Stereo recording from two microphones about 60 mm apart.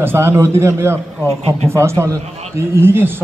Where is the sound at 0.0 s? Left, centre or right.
Right.